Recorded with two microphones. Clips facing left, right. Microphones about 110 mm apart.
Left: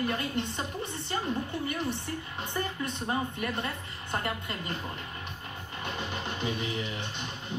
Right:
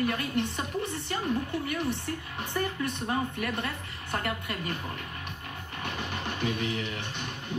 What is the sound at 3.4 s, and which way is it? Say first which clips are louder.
A woman's voice: right 1 dB; 15° left (ahead or behind).